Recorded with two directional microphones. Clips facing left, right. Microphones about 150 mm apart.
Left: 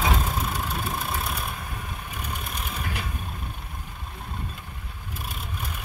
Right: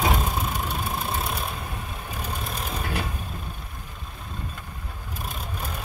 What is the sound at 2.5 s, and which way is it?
Vehicle, 35° right (ahead or behind).